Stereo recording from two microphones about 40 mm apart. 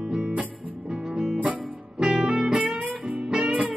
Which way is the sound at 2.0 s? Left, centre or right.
Right.